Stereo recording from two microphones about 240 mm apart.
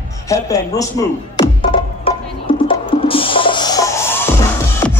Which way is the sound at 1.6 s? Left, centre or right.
Left.